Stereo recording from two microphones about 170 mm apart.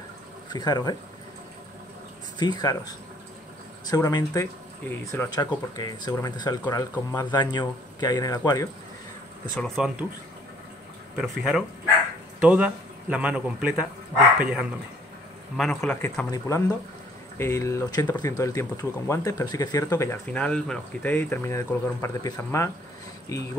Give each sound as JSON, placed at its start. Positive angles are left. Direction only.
{"t": 0.5, "sound": "speech", "side_deg": 25}
{"t": 2.3, "sound": "speech", "side_deg": 25}
{"t": 9.8, "sound": "a man's voice", "side_deg": -5}
{"t": 11.1, "sound": "a man's voice", "side_deg": 0}
{"t": 16.3, "sound": "speech", "side_deg": 20}